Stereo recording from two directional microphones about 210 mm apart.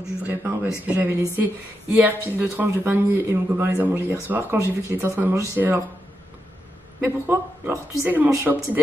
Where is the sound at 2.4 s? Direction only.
10° right (ahead or behind).